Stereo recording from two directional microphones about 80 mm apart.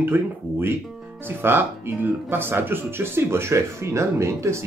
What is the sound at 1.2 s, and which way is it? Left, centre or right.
Speech, right.